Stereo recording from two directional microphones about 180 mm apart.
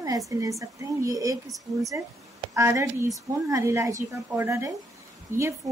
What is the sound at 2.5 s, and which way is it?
A woman's voice, 15° right (ahead or behind).